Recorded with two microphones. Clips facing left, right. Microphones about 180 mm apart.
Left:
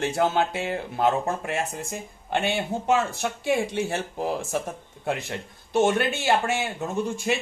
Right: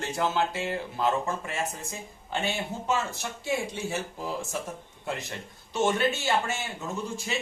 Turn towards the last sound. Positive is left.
turn(degrees=60)  # may be behind; listen again after turning